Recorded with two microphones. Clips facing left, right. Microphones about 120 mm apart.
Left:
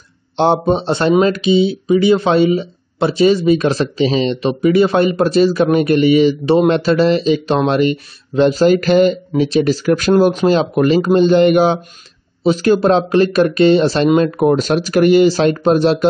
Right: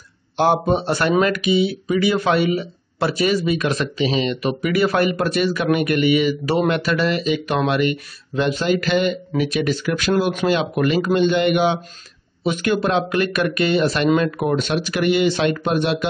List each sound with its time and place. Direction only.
0.4 s speech: 25° left (ahead or behind)
9.3 s speech: 30° left (ahead or behind)